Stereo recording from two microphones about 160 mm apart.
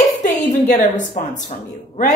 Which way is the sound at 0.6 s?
50° left (ahead or behind).